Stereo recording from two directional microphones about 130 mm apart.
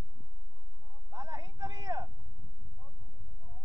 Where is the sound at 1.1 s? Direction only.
30° right (ahead or behind).